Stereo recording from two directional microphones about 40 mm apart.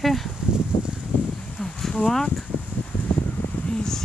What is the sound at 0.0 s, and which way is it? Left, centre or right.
Speech, centre.